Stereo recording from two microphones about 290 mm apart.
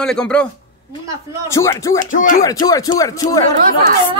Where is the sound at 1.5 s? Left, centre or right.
Centre.